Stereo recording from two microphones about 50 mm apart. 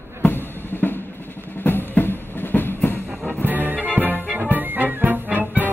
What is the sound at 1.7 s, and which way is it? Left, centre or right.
Music, left.